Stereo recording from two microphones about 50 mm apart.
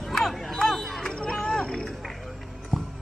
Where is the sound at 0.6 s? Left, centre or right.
Centre.